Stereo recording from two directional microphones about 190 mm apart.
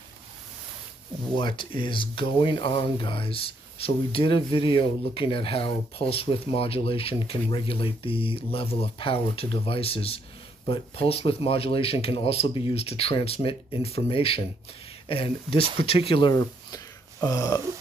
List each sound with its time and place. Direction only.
1.3 s speech: 25° left (ahead or behind)